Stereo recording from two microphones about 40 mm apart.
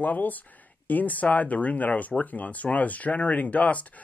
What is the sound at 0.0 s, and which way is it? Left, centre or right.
Speech, left.